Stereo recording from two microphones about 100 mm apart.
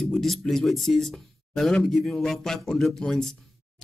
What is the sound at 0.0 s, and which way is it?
Speech, 5° left (ahead or behind).